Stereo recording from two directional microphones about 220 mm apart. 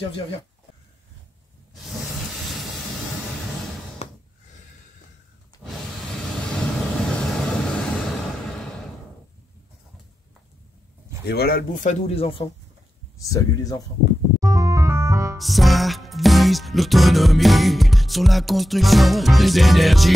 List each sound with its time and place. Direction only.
1.9 s a sound: centre (ahead or behind)
4.0 s a sound: 30° left (ahead or behind)
5.6 s vehicle: centre (ahead or behind)
11.2 s speech: 45° left (ahead or behind); by 12.4 s 25° left (ahead or behind)
13.2 s speech: 15° left (ahead or behind)
14.4 s music: 15° right (ahead or behind)
15.3 s music: centre (ahead or behind)